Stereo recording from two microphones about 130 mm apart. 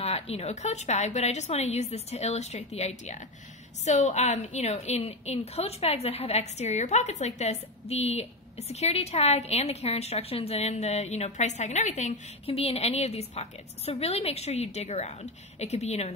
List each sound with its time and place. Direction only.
0.0 s a woman's voice: 50° left (ahead or behind); by 12.2 s 70° left (ahead or behind)
12.4 s a woman's voice: 50° left (ahead or behind)